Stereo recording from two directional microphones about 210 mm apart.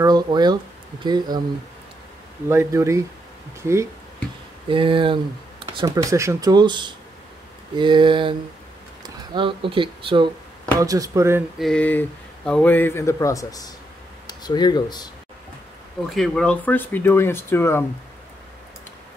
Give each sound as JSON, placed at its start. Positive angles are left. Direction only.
{"t": 0.0, "sound": "speech", "side_deg": -20}
{"t": 2.5, "sound": "speech", "side_deg": -15}
{"t": 4.6, "sound": "speech", "side_deg": -25}
{"t": 11.5, "sound": "speech", "side_deg": 0}
{"t": 16.0, "sound": "speech", "side_deg": 5}